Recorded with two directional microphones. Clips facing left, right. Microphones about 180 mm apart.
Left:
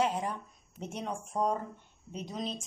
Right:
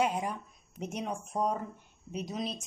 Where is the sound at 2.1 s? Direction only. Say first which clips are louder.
Right 2 dB; 10° right (ahead or behind).